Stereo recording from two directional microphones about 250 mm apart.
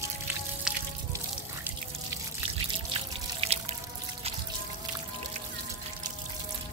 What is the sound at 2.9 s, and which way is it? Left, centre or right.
Music, right.